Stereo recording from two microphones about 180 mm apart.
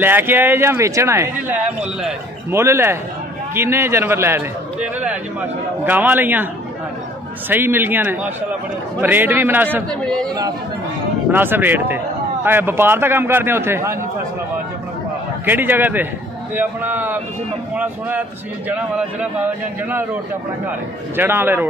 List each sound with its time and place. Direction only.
0.0 s speech: 10° right (ahead or behind)
7.4 s speech: 10° right (ahead or behind)
9.8 s a man's voice: 5° left (ahead or behind)
11.3 s speech: 10° right (ahead or behind)
15.4 s speech: 10° right (ahead or behind)
18.7 s speech: 5° right (ahead or behind)
21.2 s speech: 10° right (ahead or behind)